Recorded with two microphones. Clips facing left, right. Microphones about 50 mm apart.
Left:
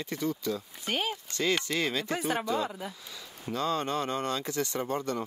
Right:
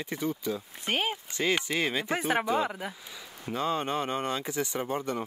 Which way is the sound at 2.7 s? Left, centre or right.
Right.